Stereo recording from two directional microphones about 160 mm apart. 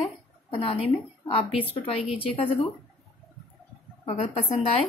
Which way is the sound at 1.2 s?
35° left (ahead or behind).